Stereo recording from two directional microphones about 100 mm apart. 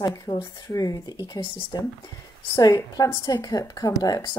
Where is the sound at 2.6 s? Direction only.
40° left (ahead or behind).